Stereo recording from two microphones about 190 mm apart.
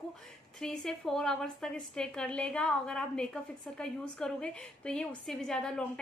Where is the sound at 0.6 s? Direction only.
Centre (ahead or behind).